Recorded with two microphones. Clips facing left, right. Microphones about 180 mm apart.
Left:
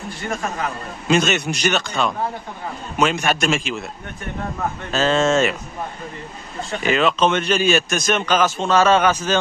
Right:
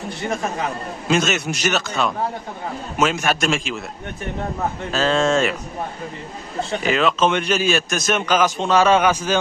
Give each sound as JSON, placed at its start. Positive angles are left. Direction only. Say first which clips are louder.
{"t": 0.2, "sound": "speech", "louder": "right 1 dB", "side_deg": -20}
{"t": 1.0, "sound": "a man's voice", "louder": "left 2 dB", "side_deg": 0}
{"t": 4.9, "sound": "a man's voice", "louder": "left 1 dB", "side_deg": 0}
{"t": 6.8, "sound": "a man's voice", "louder": "left 1 dB", "side_deg": 0}